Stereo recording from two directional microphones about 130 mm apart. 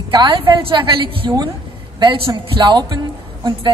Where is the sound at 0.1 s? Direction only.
40° right (ahead or behind).